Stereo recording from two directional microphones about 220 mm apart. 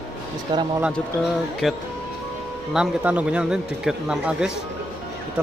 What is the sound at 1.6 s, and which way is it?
Speech, centre (ahead or behind).